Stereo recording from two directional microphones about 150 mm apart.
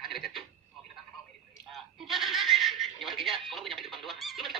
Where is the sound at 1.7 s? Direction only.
Centre (ahead or behind).